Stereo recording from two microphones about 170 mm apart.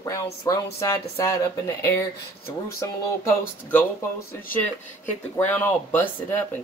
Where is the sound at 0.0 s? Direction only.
20° left (ahead or behind).